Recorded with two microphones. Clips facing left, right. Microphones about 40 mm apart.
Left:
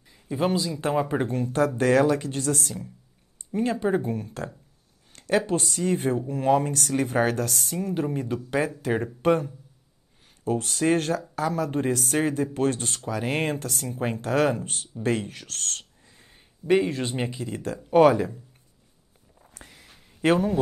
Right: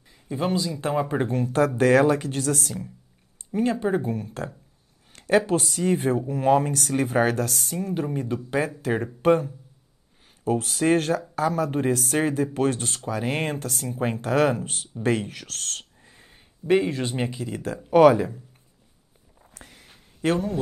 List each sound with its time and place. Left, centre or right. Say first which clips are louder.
0.1 s speech: left 1 dB; centre
1.3 s speech: right 2 dB; centre
2.5 s speech: right 1 dB; centre
3.8 s speech: even; centre
15.2 s speech: right 2 dB; right
15.5 s speech: even; centre
19.3 s a sound: even; centre
20.2 s speech: left 3 dB; centre